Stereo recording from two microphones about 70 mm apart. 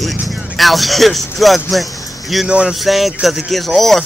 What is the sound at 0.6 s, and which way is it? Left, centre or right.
Speech, centre.